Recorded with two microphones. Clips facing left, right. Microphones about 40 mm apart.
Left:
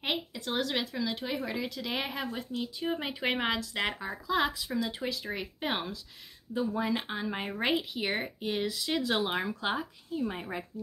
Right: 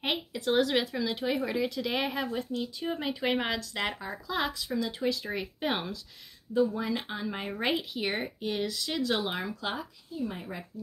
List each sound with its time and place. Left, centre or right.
0.0 s speech: centre
6.5 s speech: centre
10.1 s speech: left